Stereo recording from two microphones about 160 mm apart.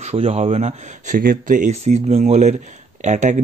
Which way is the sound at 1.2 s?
60° right (ahead or behind).